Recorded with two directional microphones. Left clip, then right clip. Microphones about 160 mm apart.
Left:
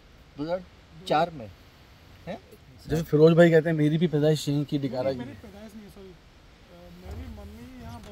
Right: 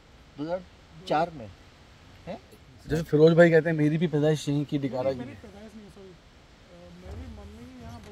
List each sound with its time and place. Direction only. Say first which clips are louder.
0.4 s speech: left 2 dB; 30° left (ahead or behind)
2.9 s speech: left 1 dB; centre (ahead or behind)